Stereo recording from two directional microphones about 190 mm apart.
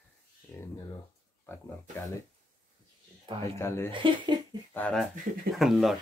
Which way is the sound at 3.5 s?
15° left (ahead or behind).